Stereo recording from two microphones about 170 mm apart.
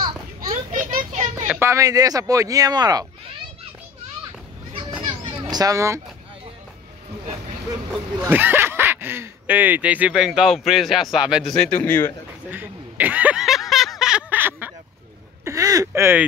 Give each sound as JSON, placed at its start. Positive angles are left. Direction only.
{"t": 0.4, "sound": "children playing", "side_deg": -50}
{"t": 1.5, "sound": "speech", "side_deg": -15}
{"t": 5.0, "sound": "children playing", "side_deg": -35}
{"t": 5.5, "sound": "speech", "side_deg": -20}
{"t": 8.2, "sound": "speech", "side_deg": -10}
{"t": 12.4, "sound": "a sound", "side_deg": -10}
{"t": 15.4, "sound": "speech", "side_deg": -20}